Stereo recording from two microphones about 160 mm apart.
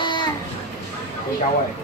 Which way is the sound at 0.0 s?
30° left (ahead or behind).